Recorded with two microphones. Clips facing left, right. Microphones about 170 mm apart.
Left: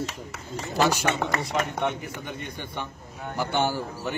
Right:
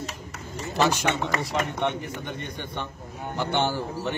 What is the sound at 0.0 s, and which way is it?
Speech, 70° left (ahead or behind).